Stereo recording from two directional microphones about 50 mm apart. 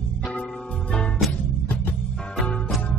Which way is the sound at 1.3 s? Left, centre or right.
Left.